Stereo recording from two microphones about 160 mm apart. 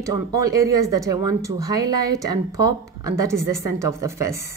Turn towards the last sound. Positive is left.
turn(degrees=-20)  # may be behind; listen again after turning